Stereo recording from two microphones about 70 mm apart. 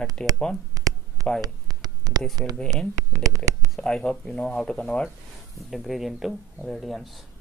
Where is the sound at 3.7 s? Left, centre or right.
Centre.